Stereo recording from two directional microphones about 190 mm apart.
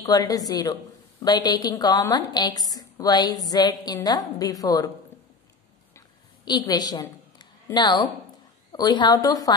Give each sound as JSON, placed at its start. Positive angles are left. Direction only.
{"t": 0.0, "sound": "a woman's voice", "side_deg": 20}
{"t": 5.9, "sound": "a sound", "side_deg": 20}
{"t": 8.7, "sound": "a woman's voice", "side_deg": 20}